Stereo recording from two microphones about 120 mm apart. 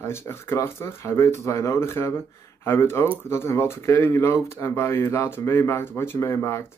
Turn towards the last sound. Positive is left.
turn(degrees=25)  # may be behind; listen again after turning